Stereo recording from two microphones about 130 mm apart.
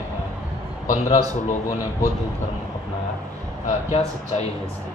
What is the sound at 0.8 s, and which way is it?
Speech, 65° left (ahead or behind).